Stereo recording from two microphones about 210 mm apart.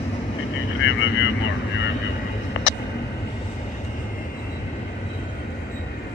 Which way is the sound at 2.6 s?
65° left (ahead or behind).